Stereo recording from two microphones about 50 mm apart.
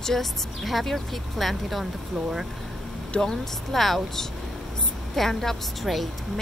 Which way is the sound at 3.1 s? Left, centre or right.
Centre.